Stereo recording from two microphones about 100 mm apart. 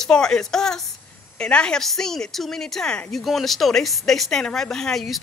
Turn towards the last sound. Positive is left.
turn(degrees=0)  # may be behind; listen again after turning